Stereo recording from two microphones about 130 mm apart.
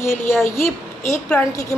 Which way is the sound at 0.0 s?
20° left (ahead or behind).